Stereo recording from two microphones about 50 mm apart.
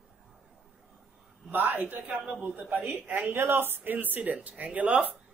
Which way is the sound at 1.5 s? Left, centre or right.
Right.